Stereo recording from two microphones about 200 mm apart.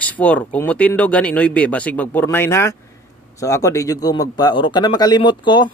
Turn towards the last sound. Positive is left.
turn(degrees=20)  # may be behind; listen again after turning